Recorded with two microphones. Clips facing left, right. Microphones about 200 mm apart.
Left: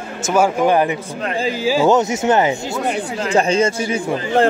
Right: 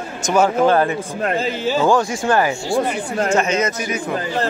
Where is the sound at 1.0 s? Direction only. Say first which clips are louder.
Right 3 dB; 50° right (ahead or behind).